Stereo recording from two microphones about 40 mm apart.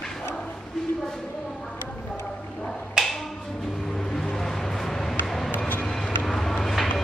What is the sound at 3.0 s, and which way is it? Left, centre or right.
Music, centre.